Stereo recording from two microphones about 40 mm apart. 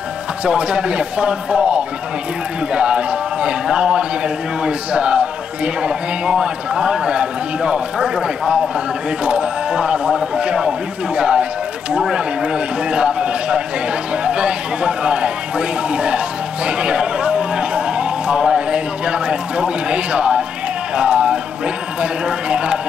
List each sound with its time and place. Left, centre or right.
0.5 s speech: right
10.0 s a man's voice: centre; by 16.2 s right
16.6 s a sound: right
22.0 s speech: right